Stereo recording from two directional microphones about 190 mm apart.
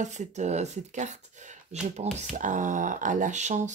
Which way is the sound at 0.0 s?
40° right (ahead or behind).